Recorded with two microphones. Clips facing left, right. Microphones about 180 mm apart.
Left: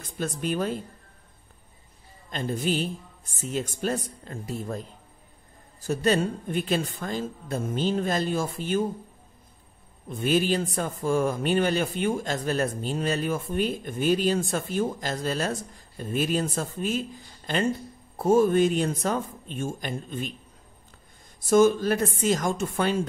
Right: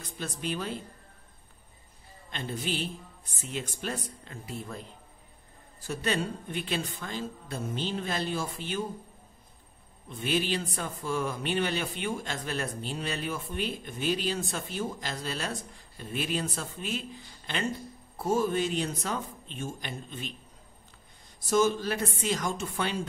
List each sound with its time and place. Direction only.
0.0 s a man's voice: 45° left (ahead or behind)
2.3 s a man's voice: 45° left (ahead or behind)
10.0 s a man's voice: 45° left (ahead or behind)
18.1 s a man's voice: 50° left (ahead or behind)
21.5 s a man's voice: 50° left (ahead or behind)